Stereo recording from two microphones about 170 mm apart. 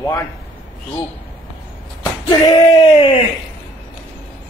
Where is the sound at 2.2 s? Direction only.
25° left (ahead or behind).